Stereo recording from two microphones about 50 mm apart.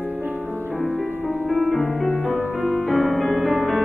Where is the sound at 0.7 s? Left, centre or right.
Centre.